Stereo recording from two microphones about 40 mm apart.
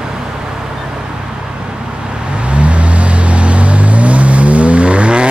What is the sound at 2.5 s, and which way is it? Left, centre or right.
Vehicle, right.